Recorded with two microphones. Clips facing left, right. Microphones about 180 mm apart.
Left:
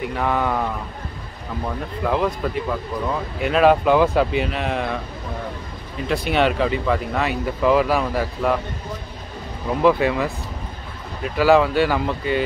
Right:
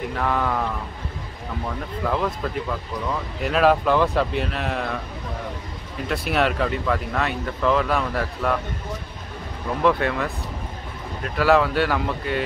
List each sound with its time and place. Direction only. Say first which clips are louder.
0.1 s speech: left 2 dB; 5° left (ahead or behind)
2.0 s speech: left 3 dB; 5° left (ahead or behind)
6.0 s speech: left 3 dB; centre (ahead or behind)
9.7 s speech: left 3 dB; 5° left (ahead or behind)